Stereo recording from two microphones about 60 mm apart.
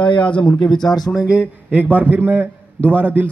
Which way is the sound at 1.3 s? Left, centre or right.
Right.